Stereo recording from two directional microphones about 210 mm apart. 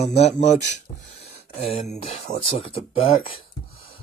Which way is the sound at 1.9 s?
30° left (ahead or behind).